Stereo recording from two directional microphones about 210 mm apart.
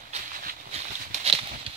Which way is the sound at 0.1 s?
40° right (ahead or behind).